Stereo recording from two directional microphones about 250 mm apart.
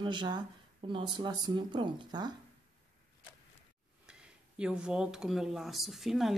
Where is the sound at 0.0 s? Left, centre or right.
Centre.